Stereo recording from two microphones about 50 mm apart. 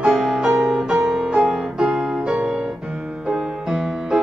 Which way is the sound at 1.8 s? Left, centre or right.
Centre.